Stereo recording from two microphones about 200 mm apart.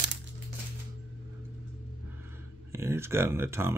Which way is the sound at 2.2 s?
10° right (ahead or behind).